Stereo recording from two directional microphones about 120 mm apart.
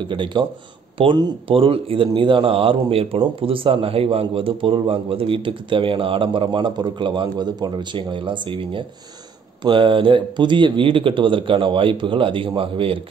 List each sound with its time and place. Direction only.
0.0 s speech: 40° right (ahead or behind)